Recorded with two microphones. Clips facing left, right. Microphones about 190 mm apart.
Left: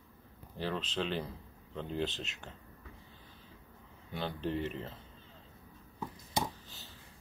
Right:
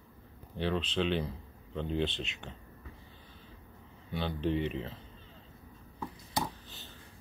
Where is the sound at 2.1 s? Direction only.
40° left (ahead or behind).